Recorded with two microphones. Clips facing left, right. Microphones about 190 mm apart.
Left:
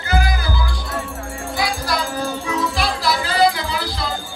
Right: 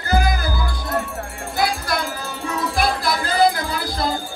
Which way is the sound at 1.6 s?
55° right (ahead or behind).